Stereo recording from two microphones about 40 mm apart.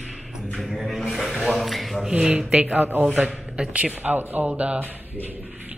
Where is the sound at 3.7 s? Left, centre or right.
Right.